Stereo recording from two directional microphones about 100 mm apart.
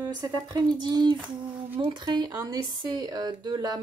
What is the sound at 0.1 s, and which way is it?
Speech, 45° right (ahead or behind).